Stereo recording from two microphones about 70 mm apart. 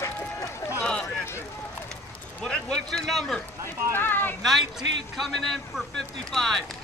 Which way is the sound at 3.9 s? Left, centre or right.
Left.